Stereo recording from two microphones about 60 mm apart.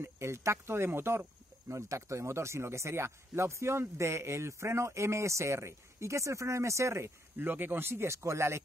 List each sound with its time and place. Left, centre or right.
0.0 s speech: right
1.7 s speech: right
7.4 s speech: right